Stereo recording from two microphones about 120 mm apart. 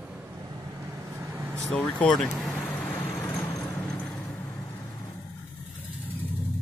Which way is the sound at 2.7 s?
20° left (ahead or behind).